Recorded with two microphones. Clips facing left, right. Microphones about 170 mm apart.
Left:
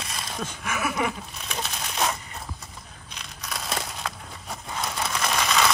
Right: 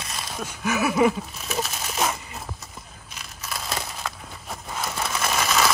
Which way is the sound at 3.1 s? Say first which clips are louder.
Right 1 dB; centre (ahead or behind).